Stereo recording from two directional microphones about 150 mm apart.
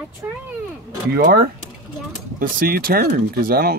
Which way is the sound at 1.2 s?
90° right.